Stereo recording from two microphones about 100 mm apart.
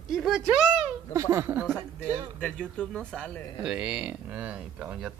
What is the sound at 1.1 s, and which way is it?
Speech, 30° right (ahead or behind).